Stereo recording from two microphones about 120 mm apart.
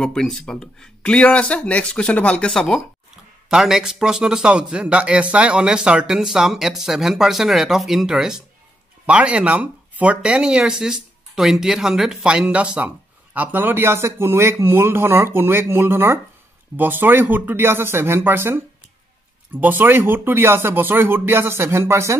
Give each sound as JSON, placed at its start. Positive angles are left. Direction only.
{"t": 0.0, "sound": "a man's voice", "side_deg": 5}
{"t": 19.6, "sound": "speech", "side_deg": -15}